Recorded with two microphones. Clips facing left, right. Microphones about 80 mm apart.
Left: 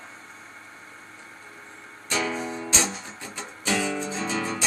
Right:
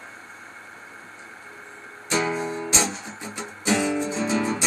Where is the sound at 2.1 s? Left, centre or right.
Right.